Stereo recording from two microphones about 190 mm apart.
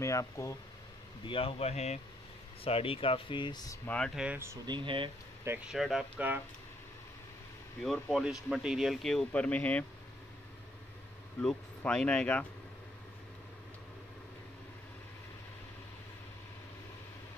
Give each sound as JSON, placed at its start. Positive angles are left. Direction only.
{"t": 0.0, "sound": "speech", "side_deg": 15}
{"t": 1.2, "sound": "speech", "side_deg": 30}
{"t": 3.8, "sound": "speech", "side_deg": 5}
{"t": 4.6, "sound": "speech", "side_deg": -25}
{"t": 5.7, "sound": "speech", "side_deg": 0}
{"t": 7.8, "sound": "speech", "side_deg": 0}
{"t": 11.4, "sound": "speech", "side_deg": 5}